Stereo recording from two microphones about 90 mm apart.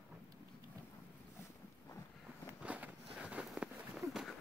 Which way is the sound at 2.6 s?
15° right (ahead or behind).